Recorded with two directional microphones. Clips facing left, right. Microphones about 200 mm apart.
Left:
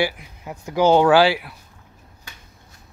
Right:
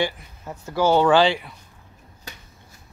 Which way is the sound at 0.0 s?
15° left (ahead or behind).